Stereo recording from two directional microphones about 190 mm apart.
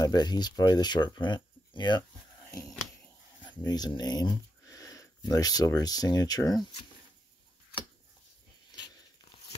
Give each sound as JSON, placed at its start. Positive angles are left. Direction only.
{"t": 0.0, "sound": "speech", "side_deg": 20}
{"t": 3.6, "sound": "speech", "side_deg": 20}